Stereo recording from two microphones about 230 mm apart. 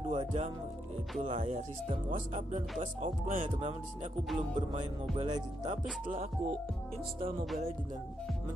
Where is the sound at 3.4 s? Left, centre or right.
Right.